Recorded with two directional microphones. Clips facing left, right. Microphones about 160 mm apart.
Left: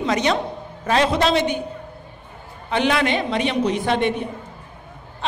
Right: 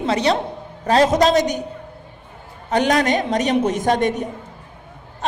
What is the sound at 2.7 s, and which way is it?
A man's voice, 40° right (ahead or behind).